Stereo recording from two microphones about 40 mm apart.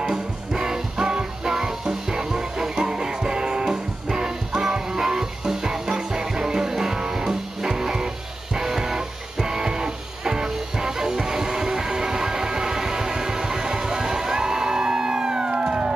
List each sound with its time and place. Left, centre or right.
0.0 s music: centre